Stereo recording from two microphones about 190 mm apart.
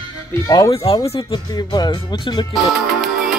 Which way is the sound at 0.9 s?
25° left (ahead or behind).